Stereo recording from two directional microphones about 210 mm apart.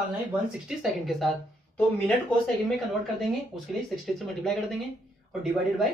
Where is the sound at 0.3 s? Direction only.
5° right (ahead or behind).